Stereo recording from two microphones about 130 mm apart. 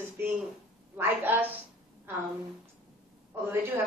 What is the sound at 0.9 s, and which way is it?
Speech, 15° right (ahead or behind).